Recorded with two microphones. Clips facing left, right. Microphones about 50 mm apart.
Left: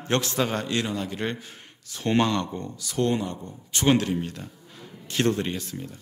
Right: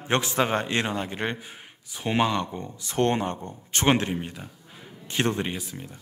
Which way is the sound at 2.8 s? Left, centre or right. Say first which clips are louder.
Right 1 dB; right.